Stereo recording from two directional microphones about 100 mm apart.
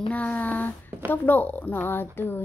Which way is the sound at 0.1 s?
15° left (ahead or behind).